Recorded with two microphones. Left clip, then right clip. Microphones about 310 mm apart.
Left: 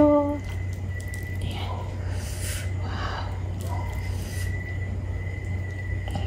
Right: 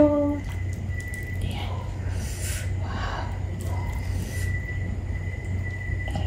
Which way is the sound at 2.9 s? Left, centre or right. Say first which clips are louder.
Even; centre.